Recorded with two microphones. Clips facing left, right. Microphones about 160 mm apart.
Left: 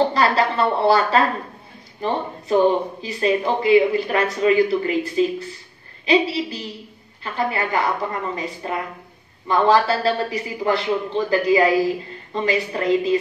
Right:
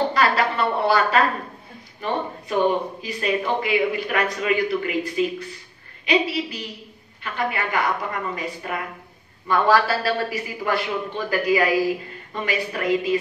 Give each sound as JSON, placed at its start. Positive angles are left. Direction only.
{"t": 0.1, "sound": "a man's voice", "side_deg": 30}
{"t": 9.5, "sound": "a man's voice", "side_deg": 20}